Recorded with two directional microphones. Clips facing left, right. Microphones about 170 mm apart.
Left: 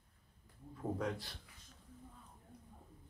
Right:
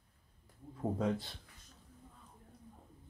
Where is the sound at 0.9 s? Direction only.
25° right (ahead or behind).